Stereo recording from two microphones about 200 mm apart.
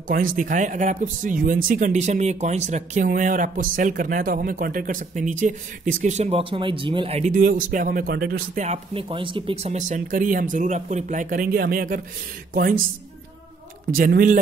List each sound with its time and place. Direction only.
0.1 s speech: 40° right (ahead or behind)
8.6 s speech: 25° right (ahead or behind); by 12.0 s 45° right (ahead or behind)
13.9 s speech: 45° right (ahead or behind)